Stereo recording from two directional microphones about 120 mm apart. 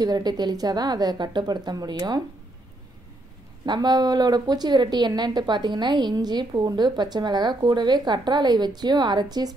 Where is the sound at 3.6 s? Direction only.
35° right (ahead or behind).